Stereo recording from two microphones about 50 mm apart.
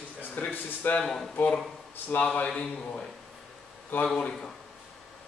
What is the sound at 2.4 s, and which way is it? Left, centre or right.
Speech, centre.